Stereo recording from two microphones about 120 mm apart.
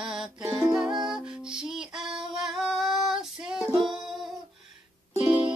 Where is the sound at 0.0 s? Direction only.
5° right (ahead or behind).